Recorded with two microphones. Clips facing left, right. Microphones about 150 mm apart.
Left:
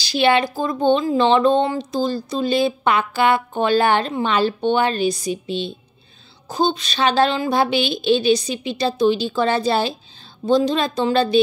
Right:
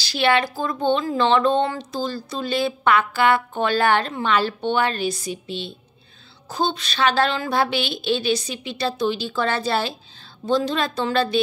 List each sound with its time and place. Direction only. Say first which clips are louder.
0.0 s a woman's voice: left 3 dB; 20° left (ahead or behind)